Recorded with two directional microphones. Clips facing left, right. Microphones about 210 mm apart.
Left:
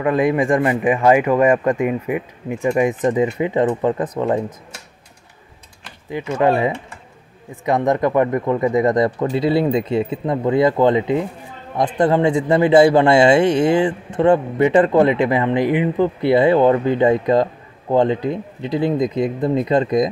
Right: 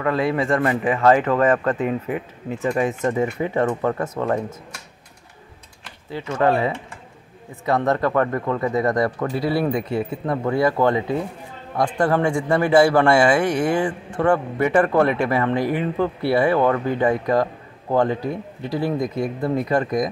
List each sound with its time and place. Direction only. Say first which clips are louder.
0.0 s speech: left 4 dB; 15° left (ahead or behind)
6.0 s a man's voice: left 3 dB; 15° left (ahead or behind)